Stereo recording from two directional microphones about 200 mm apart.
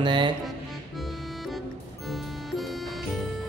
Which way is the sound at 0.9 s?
Centre (ahead or behind).